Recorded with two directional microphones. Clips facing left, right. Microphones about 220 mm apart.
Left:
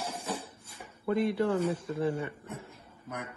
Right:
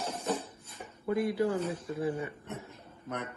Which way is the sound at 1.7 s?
25° left (ahead or behind).